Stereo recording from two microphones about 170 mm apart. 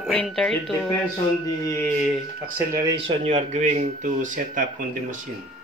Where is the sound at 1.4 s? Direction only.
20° left (ahead or behind).